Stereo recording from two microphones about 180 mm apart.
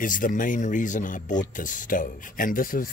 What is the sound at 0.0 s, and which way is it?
Speech, 50° left (ahead or behind).